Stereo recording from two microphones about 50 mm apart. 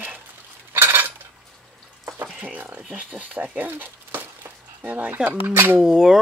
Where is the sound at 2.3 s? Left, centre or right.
Right.